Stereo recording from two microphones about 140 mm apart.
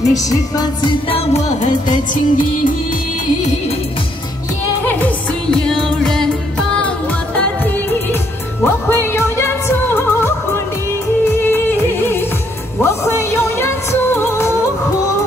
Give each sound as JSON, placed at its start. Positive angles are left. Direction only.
{"t": 0.1, "sound": "music", "side_deg": 25}
{"t": 1.1, "sound": "music", "side_deg": 50}
{"t": 1.9, "sound": "music", "side_deg": 70}
{"t": 4.8, "sound": "music", "side_deg": 10}
{"t": 8.6, "sound": "music", "side_deg": 15}